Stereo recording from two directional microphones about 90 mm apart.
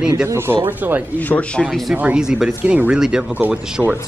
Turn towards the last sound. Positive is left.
turn(degrees=-20)  # may be behind; listen again after turning